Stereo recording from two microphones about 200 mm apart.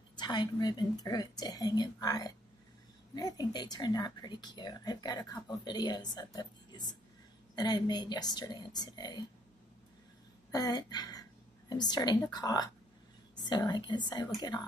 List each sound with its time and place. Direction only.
0.1 s speech: 20° left (ahead or behind)
7.5 s speech: 20° left (ahead or behind)
10.5 s speech: 20° left (ahead or behind)